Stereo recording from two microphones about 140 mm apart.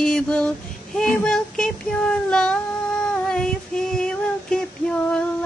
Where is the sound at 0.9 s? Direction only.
5° left (ahead or behind).